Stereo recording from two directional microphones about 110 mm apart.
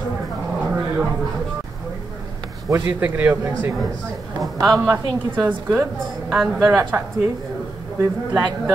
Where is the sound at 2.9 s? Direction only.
15° right (ahead or behind).